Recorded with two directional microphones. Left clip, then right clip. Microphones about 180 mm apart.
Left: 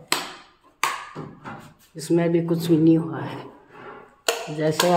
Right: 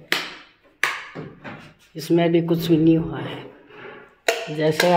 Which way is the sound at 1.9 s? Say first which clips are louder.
Right 3 dB; centre (ahead or behind).